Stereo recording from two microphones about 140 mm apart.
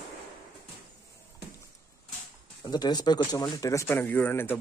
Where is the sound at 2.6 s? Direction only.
30° left (ahead or behind).